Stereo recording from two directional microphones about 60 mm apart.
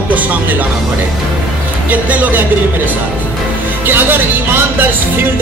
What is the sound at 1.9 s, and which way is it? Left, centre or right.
Music, right.